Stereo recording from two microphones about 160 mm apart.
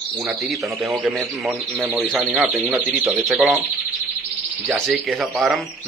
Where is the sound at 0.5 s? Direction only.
Centre (ahead or behind).